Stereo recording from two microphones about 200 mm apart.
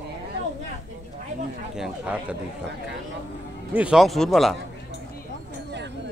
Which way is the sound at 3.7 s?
5° right (ahead or behind).